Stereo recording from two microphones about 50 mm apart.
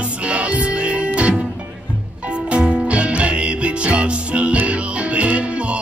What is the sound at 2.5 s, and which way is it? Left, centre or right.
Music, right.